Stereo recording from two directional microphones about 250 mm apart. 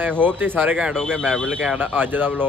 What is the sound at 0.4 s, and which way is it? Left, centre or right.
Speech, centre.